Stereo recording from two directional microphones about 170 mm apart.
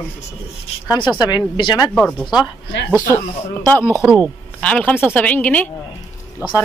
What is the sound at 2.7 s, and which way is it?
Speech, 90° left.